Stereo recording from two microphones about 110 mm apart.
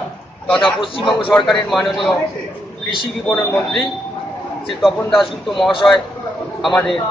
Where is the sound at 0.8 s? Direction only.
50° left (ahead or behind).